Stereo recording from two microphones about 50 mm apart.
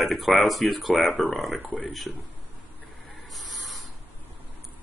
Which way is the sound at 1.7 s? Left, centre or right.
Left.